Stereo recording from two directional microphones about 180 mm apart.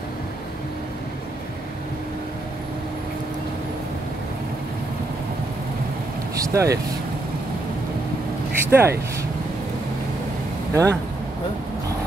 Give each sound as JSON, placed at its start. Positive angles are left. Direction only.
{"t": 6.3, "sound": "vehicle", "side_deg": -15}
{"t": 8.6, "sound": "speech", "side_deg": -15}
{"t": 10.7, "sound": "speech", "side_deg": -15}